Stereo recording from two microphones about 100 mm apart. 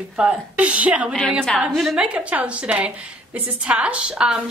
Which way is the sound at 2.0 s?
10° right (ahead or behind).